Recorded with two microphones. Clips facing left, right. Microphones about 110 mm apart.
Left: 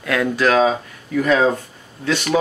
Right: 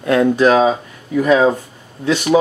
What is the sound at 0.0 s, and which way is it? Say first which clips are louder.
Speech: right 6 dB; 25° right (ahead or behind).